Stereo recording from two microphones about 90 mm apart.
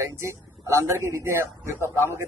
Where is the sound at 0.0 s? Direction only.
30° right (ahead or behind).